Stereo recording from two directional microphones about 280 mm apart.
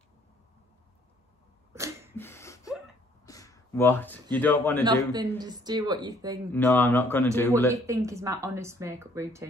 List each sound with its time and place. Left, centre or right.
1.7 s sneeze: centre
2.1 s gasp: centre
3.3 s a man's voice: centre
4.8 s speech: centre
6.5 s speech: centre
7.7 s speech: centre